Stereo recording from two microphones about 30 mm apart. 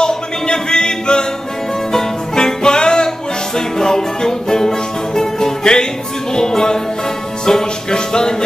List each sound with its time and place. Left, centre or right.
0.0 s music: left